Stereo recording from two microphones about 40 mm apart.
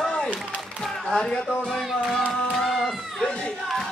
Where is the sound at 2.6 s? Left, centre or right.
Centre.